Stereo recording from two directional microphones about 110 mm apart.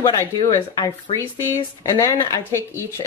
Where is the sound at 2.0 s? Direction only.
25° left (ahead or behind).